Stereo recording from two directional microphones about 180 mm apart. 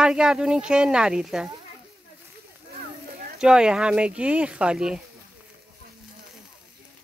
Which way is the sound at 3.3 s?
5° right (ahead or behind).